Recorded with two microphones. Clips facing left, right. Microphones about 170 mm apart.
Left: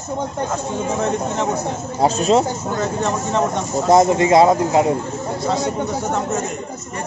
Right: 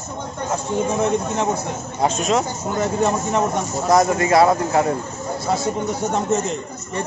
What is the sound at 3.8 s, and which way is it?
Speech, 25° left (ahead or behind).